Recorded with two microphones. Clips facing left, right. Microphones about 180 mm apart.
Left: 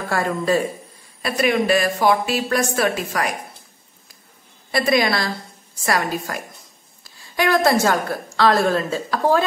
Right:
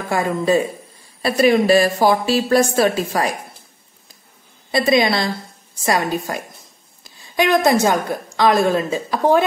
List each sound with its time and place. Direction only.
0.1 s speech: 20° right (ahead or behind)
1.2 s a woman's voice: 35° right (ahead or behind)
4.6 s a woman's voice: 20° right (ahead or behind)